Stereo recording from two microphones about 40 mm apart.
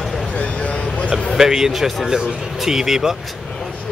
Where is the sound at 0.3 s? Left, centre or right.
Left.